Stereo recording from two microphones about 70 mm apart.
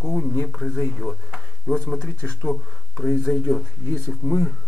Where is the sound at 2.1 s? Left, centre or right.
Centre.